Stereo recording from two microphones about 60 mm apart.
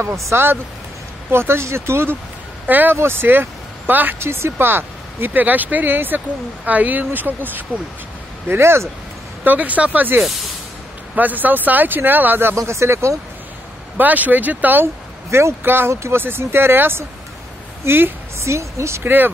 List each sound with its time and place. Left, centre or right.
0.0 s speech: right
2.6 s speech: right
4.2 s speech: right
8.5 s speech: right
9.4 s speech: right
12.5 s speech: right
13.9 s speech: right
15.9 s speech: right
16.2 s speech: right
18.4 s speech: right
19.0 s speech: right